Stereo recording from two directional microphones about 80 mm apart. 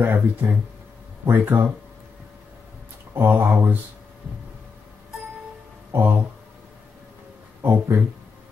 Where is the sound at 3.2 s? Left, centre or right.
Right.